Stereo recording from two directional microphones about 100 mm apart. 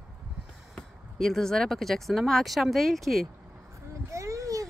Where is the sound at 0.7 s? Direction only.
5° left (ahead or behind).